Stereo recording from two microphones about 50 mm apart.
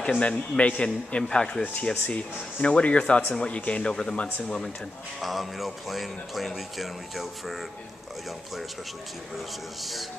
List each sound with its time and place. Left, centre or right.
0.2 s a man's voice: left
3.8 s speech: centre
5.2 s speech: centre